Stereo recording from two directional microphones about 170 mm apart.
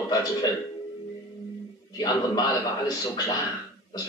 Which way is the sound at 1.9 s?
25° left (ahead or behind).